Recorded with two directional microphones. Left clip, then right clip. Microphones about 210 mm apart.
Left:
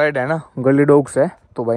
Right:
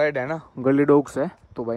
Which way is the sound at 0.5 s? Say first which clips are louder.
Left 5 dB; 25° left (ahead or behind).